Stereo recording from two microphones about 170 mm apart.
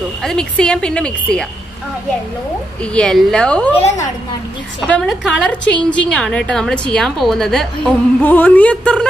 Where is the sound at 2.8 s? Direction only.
5° left (ahead or behind).